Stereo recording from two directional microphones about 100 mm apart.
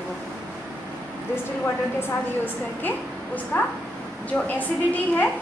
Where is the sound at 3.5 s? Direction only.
20° left (ahead or behind).